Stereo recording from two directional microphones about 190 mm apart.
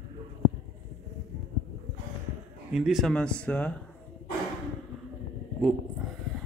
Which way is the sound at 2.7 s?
Centre (ahead or behind).